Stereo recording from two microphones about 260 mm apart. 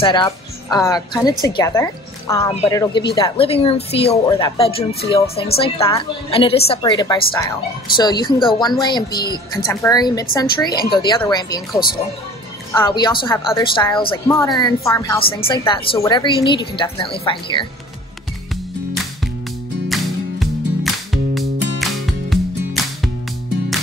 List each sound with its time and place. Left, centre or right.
0.0 s a woman's voice: centre
19.9 s music: centre